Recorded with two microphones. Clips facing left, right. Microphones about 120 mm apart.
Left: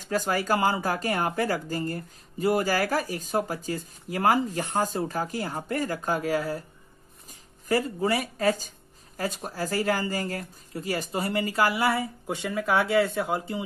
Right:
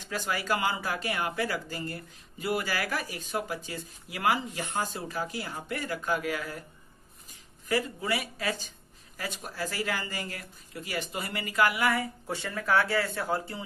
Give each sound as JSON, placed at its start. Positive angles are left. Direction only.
{"t": 0.0, "sound": "speech", "side_deg": 40}
{"t": 7.6, "sound": "speech", "side_deg": 40}
{"t": 12.4, "sound": "speech", "side_deg": 10}